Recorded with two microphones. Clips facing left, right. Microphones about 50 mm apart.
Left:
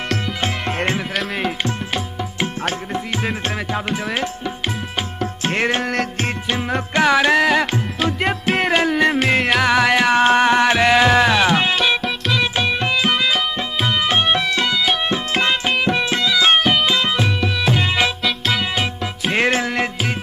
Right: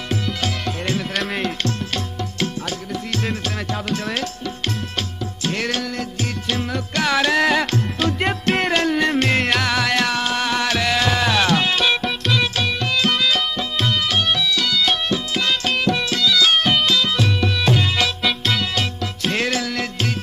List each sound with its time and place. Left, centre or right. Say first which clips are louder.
1.1 s music: left 1 dB; centre
3.9 s tabla: even; centre
5.4 s music: left 3 dB; left
10.1 s music: left 8 dB; left
11.7 s music: left 1 dB; centre
12.5 s music: left 3 dB; left
16.6 s music: left 1 dB; centre
16.9 s music: left 1 dB; left
17.4 s music: even; centre
17.7 s music: left 2 dB; left
18.2 s music: left 1 dB; centre
18.8 s music: left 1 dB; left